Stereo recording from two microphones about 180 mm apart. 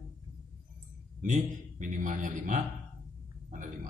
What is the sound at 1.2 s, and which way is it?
A man's voice, 45° right (ahead or behind).